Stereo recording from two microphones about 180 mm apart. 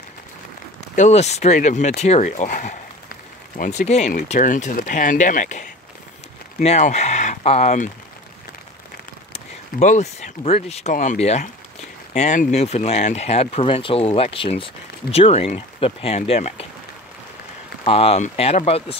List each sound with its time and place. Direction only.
0.9 s speech: 40° left (ahead or behind)
9.3 s speech: 40° left (ahead or behind)
17.8 s speech: 35° left (ahead or behind)